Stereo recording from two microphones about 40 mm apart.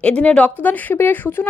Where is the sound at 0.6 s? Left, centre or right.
Left.